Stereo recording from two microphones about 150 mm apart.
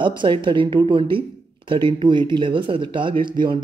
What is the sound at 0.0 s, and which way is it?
Speech, 35° right (ahead or behind).